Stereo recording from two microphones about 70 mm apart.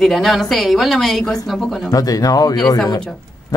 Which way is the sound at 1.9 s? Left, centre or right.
Left.